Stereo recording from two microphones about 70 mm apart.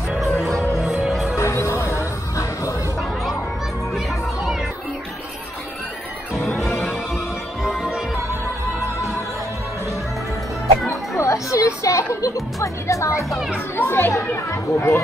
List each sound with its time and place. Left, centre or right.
0.2 s music: centre
1.3 s music: left
6.3 s music: centre
10.9 s music: left
13.7 s chatter: left